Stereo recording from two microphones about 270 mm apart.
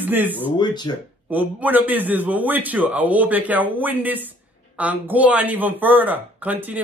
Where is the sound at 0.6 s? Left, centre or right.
Centre.